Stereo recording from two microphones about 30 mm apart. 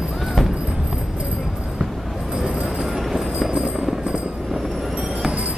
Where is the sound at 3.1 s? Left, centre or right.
Centre.